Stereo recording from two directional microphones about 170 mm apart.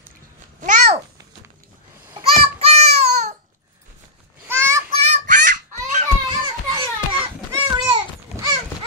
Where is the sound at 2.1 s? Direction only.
35° right (ahead or behind).